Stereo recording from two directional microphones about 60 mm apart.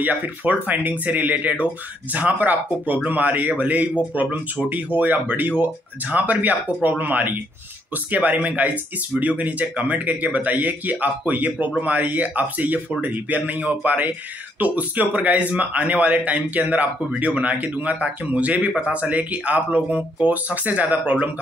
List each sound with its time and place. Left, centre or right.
0.0 s speech: right